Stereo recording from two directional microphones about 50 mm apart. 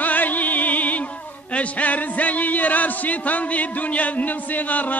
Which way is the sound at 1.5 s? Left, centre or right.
Left.